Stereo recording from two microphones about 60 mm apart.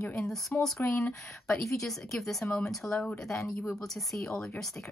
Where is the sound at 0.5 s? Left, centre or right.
Left.